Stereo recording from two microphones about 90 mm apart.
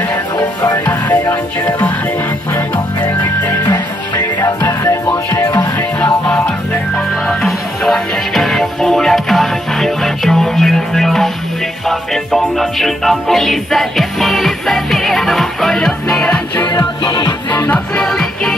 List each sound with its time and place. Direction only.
1.2 s music: 20° left (ahead or behind)
4.6 s music: 30° left (ahead or behind)
5.6 s music: 15° left (ahead or behind)
16.7 s music: 55° left (ahead or behind)
17.6 s music: 5° left (ahead or behind)